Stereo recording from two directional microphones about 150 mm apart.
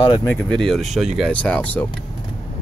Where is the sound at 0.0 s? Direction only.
30° left (ahead or behind).